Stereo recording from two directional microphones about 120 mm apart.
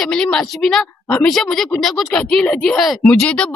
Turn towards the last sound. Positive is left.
turn(degrees=10)  # may be behind; listen again after turning